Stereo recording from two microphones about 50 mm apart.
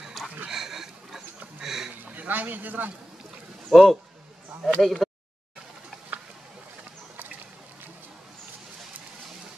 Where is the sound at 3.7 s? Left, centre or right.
Centre.